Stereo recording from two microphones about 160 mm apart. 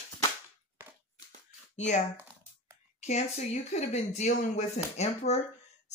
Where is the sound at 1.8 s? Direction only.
50° left (ahead or behind).